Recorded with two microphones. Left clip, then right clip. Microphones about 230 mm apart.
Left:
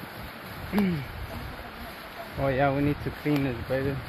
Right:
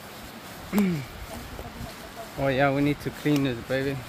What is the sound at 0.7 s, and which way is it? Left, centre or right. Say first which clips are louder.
Speech: right 1 dB; right.